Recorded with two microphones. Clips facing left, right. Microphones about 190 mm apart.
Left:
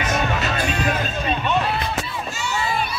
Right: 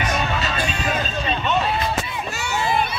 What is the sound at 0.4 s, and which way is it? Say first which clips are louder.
Music: left 2 dB; 55° left (ahead or behind).